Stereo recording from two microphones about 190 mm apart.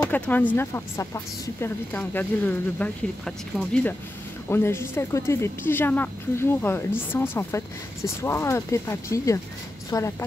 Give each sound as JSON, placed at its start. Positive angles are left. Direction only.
{"t": 0.1, "sound": "speech", "side_deg": 10}